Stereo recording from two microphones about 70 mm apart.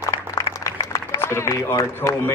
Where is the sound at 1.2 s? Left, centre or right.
Left.